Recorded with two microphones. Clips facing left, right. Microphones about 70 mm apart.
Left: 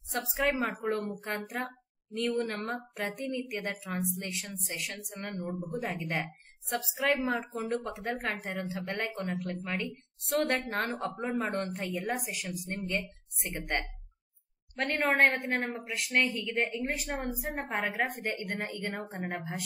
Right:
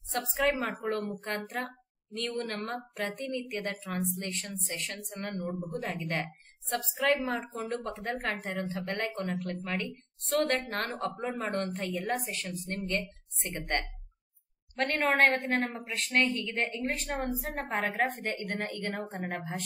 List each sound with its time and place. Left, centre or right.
0.1 s a woman's voice: centre